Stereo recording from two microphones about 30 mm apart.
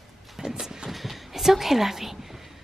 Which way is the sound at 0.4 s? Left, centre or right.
Centre.